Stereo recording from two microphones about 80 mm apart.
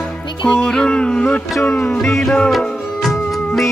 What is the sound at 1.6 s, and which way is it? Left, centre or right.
Music, left.